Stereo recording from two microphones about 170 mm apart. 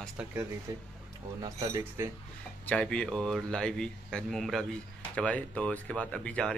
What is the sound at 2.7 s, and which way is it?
Speech, 5° left (ahead or behind).